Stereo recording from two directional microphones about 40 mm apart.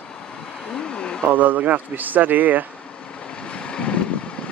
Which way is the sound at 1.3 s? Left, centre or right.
Right.